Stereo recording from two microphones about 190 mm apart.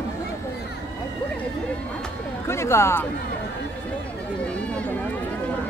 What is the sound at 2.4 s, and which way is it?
Speech, 15° left (ahead or behind).